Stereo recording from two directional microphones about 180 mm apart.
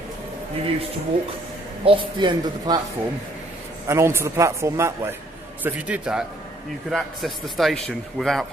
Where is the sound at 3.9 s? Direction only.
15° right (ahead or behind).